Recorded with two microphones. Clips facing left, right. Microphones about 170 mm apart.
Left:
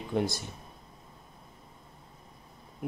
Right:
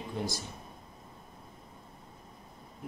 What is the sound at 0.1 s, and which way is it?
Speech, 65° left (ahead or behind).